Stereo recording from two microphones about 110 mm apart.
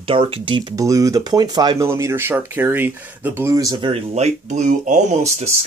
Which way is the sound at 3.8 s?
60° right (ahead or behind).